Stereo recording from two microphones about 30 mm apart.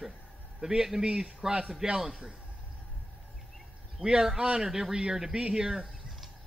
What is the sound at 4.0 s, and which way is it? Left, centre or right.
Speech, right.